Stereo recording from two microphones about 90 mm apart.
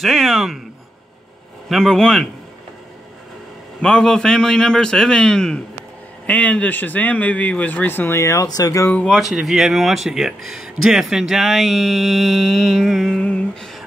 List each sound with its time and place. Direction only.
0.0 s speech: centre (ahead or behind)
1.7 s speech: 5° left (ahead or behind)
3.8 s a man's voice: 5° left (ahead or behind); by 8.5 s 35° left (ahead or behind)
8.5 s speech: 45° left (ahead or behind)
9.0 s speech: centre (ahead or behind)
13.2 s a sound: 10° left (ahead or behind)